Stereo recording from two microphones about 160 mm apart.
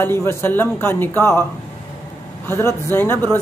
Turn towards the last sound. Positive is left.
turn(degrees=15)  # may be behind; listen again after turning